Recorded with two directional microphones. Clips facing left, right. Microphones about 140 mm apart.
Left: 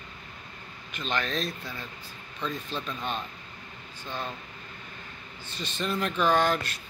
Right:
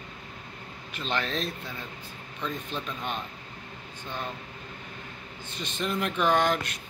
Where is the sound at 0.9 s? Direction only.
30° right (ahead or behind).